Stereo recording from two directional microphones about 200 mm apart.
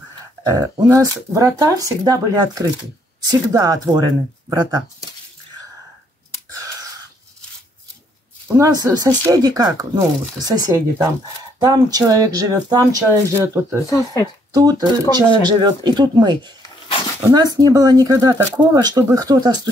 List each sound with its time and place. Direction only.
0.4 s speech: 15° right (ahead or behind)
8.8 s speech: 15° right (ahead or behind)
13.8 s speech: 15° left (ahead or behind)
14.5 s speech: 20° right (ahead or behind)